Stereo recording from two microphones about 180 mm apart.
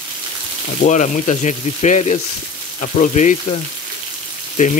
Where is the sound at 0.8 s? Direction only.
40° left (ahead or behind).